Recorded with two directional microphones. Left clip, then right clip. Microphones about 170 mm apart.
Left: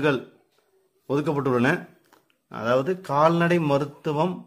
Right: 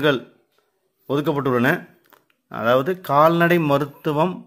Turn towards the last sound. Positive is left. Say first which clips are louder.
# right 4 dB
turn(degrees=-20)  # may be behind; listen again after turning